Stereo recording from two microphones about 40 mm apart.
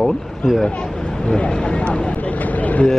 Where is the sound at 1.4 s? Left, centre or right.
Left.